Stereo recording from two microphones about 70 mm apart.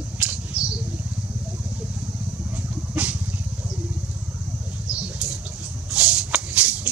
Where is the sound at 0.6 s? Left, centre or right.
Centre.